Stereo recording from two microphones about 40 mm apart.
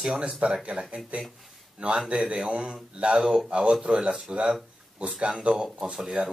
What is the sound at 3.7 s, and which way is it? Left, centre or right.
Speech, right.